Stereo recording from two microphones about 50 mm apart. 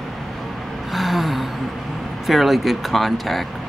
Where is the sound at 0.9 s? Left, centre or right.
Centre.